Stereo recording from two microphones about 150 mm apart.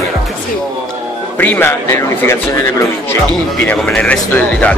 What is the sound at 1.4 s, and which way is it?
Speech, 15° left (ahead or behind).